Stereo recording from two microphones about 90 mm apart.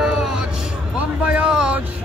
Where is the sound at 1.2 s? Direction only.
10° right (ahead or behind).